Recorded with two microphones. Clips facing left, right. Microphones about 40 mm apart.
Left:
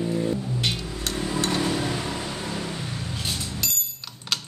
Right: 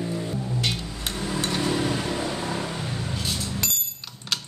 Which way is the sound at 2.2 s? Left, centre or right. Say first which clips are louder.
Right 3 dB; centre.